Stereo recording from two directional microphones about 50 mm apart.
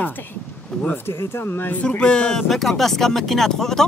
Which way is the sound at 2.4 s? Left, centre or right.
Centre.